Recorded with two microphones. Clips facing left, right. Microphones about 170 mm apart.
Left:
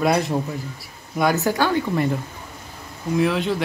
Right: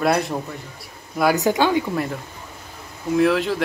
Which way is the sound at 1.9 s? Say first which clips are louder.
Left 3 dB; centre (ahead or behind).